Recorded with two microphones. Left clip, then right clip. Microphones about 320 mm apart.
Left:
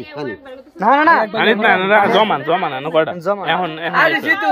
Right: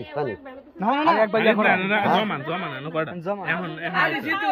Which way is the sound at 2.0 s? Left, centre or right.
Left.